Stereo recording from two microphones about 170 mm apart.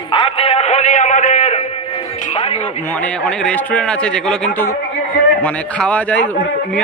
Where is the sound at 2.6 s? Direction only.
10° left (ahead or behind).